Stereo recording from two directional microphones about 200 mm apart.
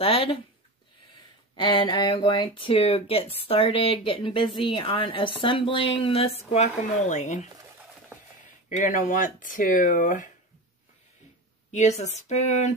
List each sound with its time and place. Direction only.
0.0 s speech: 25° left (ahead or behind)
1.5 s speech: 25° left (ahead or behind)
8.6 s speech: 35° left (ahead or behind)
11.7 s speech: 35° left (ahead or behind)